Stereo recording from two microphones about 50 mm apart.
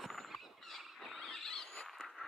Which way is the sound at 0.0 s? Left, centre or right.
Centre.